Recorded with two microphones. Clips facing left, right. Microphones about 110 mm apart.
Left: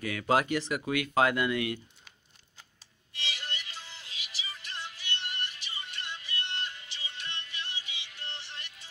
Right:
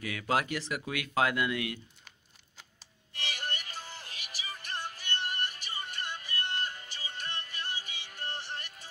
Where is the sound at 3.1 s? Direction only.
50° right (ahead or behind).